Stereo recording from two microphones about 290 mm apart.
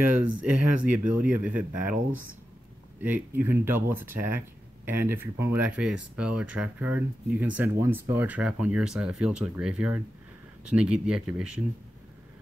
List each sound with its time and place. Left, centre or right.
0.0 s speech: centre
0.5 s speech: right
0.8 s speech: centre
3.0 s speech: centre